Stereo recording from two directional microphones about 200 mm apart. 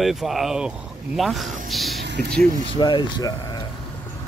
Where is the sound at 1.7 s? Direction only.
Centre (ahead or behind).